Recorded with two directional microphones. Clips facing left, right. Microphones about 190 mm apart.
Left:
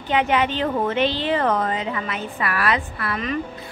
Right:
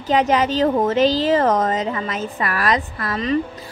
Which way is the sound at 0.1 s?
40° right (ahead or behind).